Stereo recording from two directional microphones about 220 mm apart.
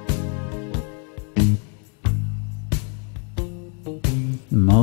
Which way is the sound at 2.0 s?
20° right (ahead or behind).